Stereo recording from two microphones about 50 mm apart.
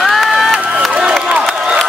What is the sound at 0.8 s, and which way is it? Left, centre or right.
Crowd, centre.